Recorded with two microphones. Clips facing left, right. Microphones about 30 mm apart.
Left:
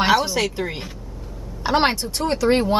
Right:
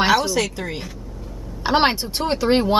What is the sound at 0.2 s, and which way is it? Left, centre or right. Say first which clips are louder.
Speech: even; centre.